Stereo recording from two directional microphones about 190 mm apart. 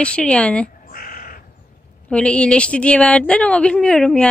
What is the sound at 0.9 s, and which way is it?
Crow, 45° left (ahead or behind).